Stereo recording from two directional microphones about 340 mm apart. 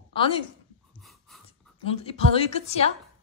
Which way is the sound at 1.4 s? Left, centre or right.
Centre.